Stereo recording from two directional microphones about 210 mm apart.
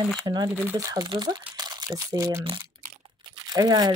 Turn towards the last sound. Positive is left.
turn(degrees=-20)  # may be behind; listen again after turning